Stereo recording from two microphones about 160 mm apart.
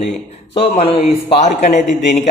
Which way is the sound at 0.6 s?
40° left (ahead or behind).